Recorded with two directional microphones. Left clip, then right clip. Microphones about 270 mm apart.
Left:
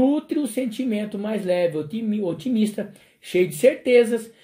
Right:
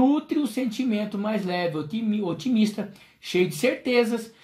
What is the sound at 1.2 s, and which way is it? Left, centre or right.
Speech, centre.